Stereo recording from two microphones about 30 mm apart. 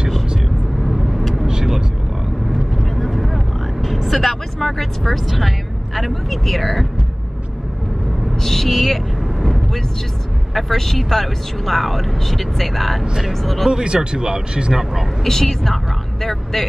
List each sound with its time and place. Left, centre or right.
0.8 s vehicle: centre
1.5 s vehicle: right
2.5 s vehicle: centre
8.4 s vehicle: centre
10.5 s speech: centre
13.7 s speech: right
15.2 s a woman's voice: centre